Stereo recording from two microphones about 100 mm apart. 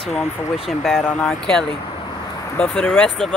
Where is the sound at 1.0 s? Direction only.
10° left (ahead or behind).